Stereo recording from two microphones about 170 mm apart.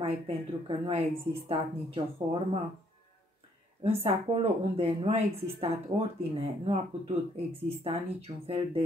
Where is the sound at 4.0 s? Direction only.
35° right (ahead or behind).